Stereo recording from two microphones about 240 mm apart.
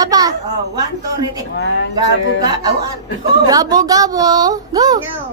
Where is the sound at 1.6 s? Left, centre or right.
Left.